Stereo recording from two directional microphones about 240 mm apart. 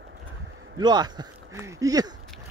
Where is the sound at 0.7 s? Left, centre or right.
Centre.